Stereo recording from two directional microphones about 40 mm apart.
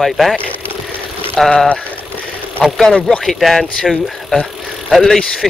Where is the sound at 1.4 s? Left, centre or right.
Centre.